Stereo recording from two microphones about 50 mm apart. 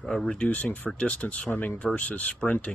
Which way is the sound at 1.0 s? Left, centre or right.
Left.